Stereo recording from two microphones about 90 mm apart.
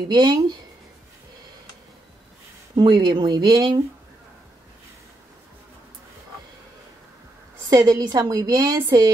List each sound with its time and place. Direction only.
0.1 s a woman's voice: 55° right (ahead or behind)
2.7 s a woman's voice: 60° right (ahead or behind)
7.7 s a woman's voice: 40° right (ahead or behind)